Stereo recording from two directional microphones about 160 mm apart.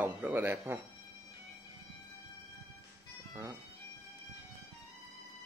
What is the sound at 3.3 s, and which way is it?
Music, 20° right (ahead or behind).